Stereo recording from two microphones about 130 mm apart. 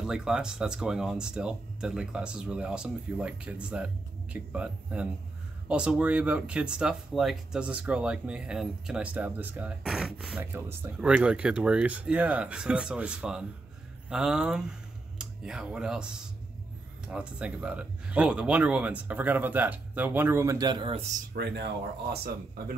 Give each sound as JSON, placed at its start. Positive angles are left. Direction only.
{"t": 0.0, "sound": "speech", "side_deg": -5}
{"t": 20.8, "sound": "speech", "side_deg": -55}